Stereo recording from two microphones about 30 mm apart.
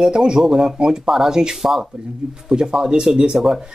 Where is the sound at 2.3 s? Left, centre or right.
Right.